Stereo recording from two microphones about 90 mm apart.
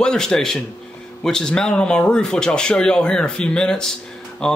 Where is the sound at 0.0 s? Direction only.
10° left (ahead or behind).